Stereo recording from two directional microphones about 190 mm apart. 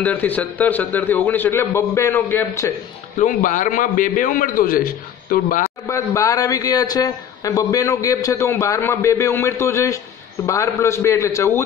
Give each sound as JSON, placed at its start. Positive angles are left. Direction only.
{"t": 0.0, "sound": "a man's voice", "side_deg": 10}
{"t": 3.2, "sound": "a man's voice", "side_deg": 40}
{"t": 5.9, "sound": "a man's voice", "side_deg": 15}